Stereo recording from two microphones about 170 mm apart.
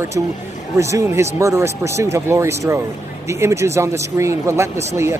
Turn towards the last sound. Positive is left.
turn(degrees=-15)  # may be behind; listen again after turning